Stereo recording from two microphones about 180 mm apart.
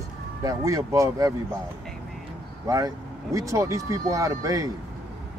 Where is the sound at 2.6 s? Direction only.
20° right (ahead or behind).